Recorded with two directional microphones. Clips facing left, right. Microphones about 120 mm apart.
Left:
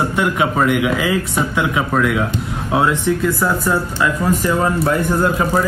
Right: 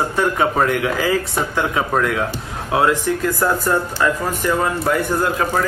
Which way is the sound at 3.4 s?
5° left (ahead or behind).